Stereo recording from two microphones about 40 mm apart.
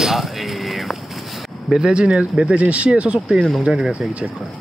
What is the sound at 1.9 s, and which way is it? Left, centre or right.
Speech, right.